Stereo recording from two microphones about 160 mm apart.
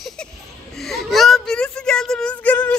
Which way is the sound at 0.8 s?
Centre (ahead or behind).